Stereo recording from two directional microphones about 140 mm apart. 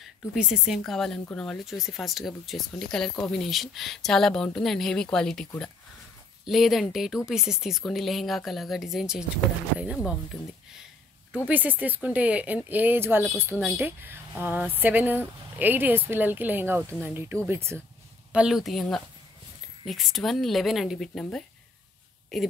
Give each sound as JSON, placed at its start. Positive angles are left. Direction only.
{"t": 0.0, "sound": "speech", "side_deg": -5}
{"t": 11.4, "sound": "speech", "side_deg": -10}
{"t": 18.3, "sound": "speech", "side_deg": -5}